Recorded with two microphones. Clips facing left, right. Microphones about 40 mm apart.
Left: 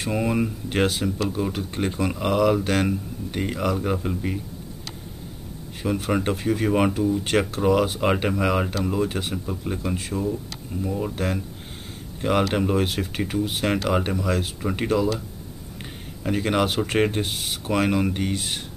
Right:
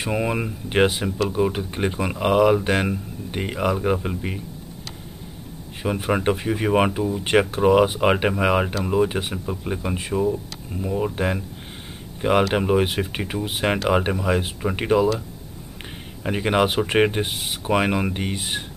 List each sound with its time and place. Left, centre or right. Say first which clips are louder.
0.0 s speech: even; right
5.8 s speech: right 1 dB; right
16.3 s speech: right 2 dB; centre